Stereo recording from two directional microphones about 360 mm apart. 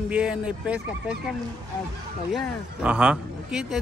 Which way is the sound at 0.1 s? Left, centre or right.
Centre.